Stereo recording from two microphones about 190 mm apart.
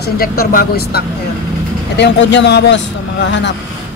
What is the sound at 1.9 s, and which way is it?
Speech, 65° left (ahead or behind).